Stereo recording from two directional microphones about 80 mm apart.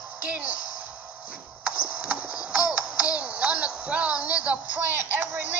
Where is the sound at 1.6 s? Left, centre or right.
Centre.